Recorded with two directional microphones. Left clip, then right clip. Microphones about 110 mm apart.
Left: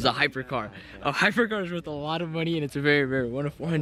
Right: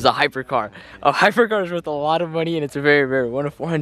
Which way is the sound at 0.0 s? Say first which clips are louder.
Right 7 dB; 25° right (ahead or behind).